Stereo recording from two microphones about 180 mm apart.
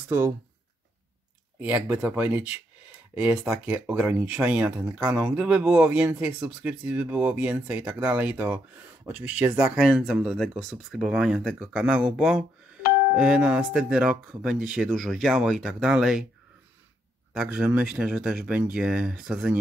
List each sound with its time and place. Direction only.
1.6 s speech: 10° right (ahead or behind)
17.3 s speech: 5° right (ahead or behind)